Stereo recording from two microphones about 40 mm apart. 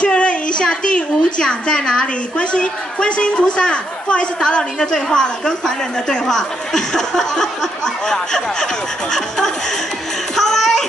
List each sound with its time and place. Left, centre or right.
0.0 s a woman's voice: left
10.3 s music: centre